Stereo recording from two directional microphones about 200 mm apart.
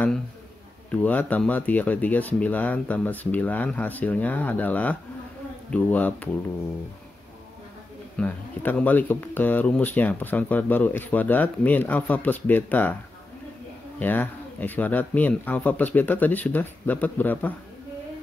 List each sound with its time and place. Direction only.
0.9 s speech: 5° left (ahead or behind)
8.2 s speech: 5° left (ahead or behind)
13.9 s speech: 10° left (ahead or behind)